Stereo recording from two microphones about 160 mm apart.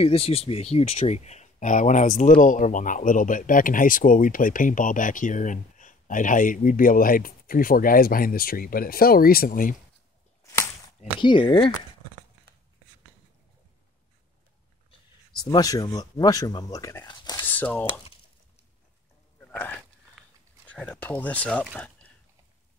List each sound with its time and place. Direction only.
0.0 s speech: 40° left (ahead or behind); by 9.8 s 60° left (ahead or behind)
11.1 s speech: 30° left (ahead or behind)
14.9 s speech: 30° left (ahead or behind)
17.5 s speech: 10° left (ahead or behind)
19.5 s speech: 10° left (ahead or behind)
21.7 s a sound: 10° left (ahead or behind)